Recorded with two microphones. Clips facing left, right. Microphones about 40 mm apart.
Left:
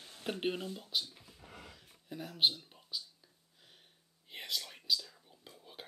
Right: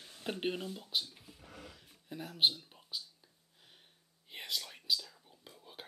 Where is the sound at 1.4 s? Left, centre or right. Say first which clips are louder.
Right 1 dB; left.